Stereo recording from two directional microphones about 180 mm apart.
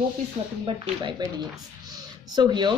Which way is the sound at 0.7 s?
25° right (ahead or behind).